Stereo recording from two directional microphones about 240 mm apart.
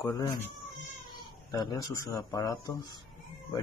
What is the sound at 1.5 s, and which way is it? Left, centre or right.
Speech, centre.